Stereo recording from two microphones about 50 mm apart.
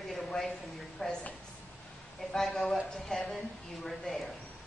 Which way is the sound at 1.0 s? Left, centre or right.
Centre.